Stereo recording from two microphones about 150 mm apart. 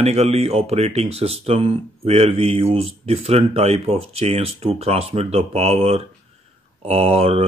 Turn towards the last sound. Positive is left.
turn(degrees=-40)  # may be behind; listen again after turning